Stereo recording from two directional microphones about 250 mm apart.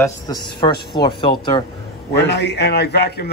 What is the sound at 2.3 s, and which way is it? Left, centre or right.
Speech, left.